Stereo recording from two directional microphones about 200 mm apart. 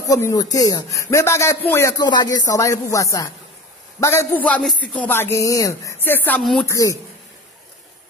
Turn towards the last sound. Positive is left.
turn(degrees=5)  # may be behind; listen again after turning